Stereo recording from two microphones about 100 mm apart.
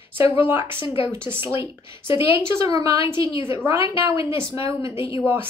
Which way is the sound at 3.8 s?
30° right (ahead or behind).